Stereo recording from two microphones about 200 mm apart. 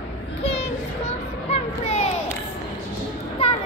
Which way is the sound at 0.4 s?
30° left (ahead or behind).